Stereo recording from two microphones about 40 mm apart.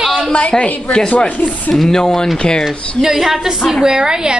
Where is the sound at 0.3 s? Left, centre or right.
Left.